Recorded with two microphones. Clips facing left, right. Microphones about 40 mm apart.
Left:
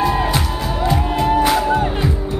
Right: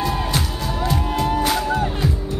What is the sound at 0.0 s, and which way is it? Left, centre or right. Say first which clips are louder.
Music: left 5 dB; centre.